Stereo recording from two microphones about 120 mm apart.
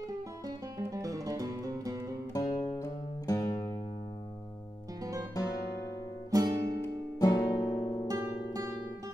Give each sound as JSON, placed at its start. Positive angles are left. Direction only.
{"t": 0.7, "sound": "music", "side_deg": -30}
{"t": 2.3, "sound": "music", "side_deg": 35}
{"t": 5.3, "sound": "guitar", "side_deg": 30}
{"t": 6.3, "sound": "guitar", "side_deg": -35}
{"t": 7.2, "sound": "music", "side_deg": 30}
{"t": 8.1, "sound": "music", "side_deg": -30}